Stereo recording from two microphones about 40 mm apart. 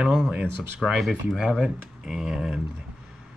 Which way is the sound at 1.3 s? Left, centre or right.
Right.